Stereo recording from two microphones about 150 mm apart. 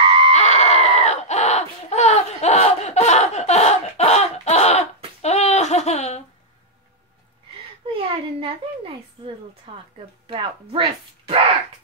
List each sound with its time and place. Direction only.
0.0 s screaming: 35° right (ahead or behind)
0.3 s screaming: 50° left (ahead or behind)
7.8 s a sound: 35° right (ahead or behind)
9.7 s a woman's voice: 35° right (ahead or behind)